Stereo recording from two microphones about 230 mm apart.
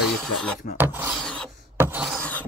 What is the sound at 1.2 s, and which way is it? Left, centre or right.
Filing, centre.